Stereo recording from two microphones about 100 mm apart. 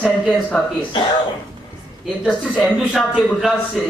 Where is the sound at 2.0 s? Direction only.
Centre (ahead or behind).